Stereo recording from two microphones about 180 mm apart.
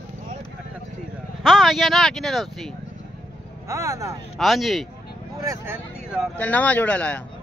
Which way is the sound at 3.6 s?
15° right (ahead or behind).